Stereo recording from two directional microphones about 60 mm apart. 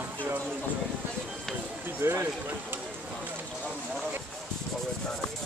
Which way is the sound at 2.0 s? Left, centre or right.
Right.